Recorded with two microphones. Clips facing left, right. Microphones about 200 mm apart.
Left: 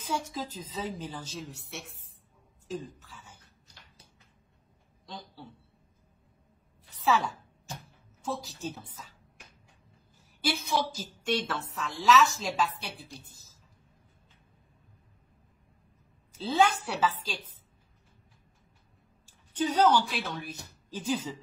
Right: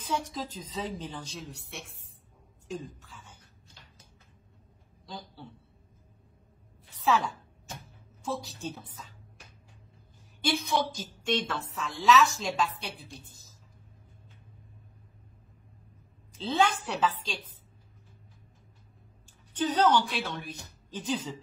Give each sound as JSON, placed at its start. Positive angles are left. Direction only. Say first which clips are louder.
{"t": 0.0, "sound": "a woman's voice", "louder": "even", "side_deg": 10}
{"t": 5.0, "sound": "a man's voice", "louder": "right 1 dB", "side_deg": 0}
{"t": 7.0, "sound": "a woman's voice", "louder": "even", "side_deg": 0}
{"t": 10.4, "sound": "a woman's voice", "louder": "right 1 dB", "side_deg": 5}
{"t": 16.3, "sound": "a woman's voice", "louder": "left 1 dB", "side_deg": 10}
{"t": 19.2, "sound": "speech", "louder": "even", "side_deg": 10}